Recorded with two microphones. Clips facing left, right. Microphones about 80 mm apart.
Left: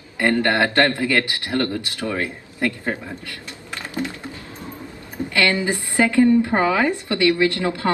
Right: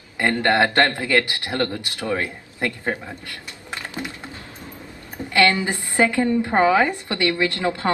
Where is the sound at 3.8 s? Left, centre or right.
Right.